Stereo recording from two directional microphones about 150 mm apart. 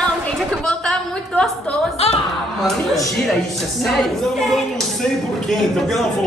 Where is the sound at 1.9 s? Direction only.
45° left (ahead or behind).